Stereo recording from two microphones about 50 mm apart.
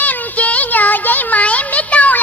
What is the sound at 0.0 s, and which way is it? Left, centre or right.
Music, left.